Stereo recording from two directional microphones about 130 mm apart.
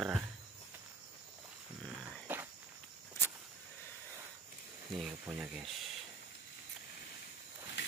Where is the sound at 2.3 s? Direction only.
15° right (ahead or behind).